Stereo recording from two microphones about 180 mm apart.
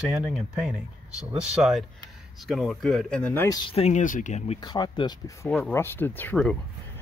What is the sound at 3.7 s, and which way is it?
Speech, 40° left (ahead or behind).